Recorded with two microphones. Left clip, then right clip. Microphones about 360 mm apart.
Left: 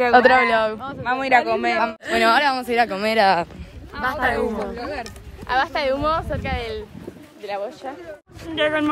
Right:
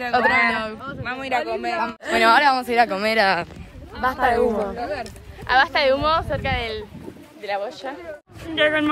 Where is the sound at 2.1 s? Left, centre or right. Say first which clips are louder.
Right 2 dB; centre.